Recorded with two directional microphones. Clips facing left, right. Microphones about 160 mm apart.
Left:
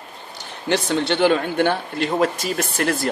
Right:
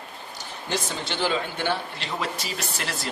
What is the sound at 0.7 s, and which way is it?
Speech, 65° left (ahead or behind).